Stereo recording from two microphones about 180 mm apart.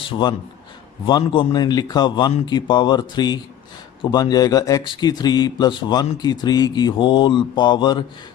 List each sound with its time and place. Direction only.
0.0 s a man's voice: 25° left (ahead or behind)